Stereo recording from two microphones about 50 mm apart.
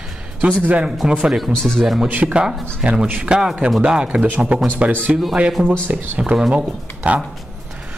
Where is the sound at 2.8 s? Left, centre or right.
Right.